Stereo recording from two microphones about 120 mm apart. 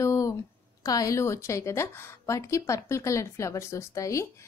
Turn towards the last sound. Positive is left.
turn(degrees=25)  # may be behind; listen again after turning